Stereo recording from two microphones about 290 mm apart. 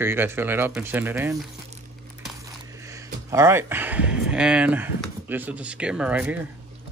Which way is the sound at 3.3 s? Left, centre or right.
Centre.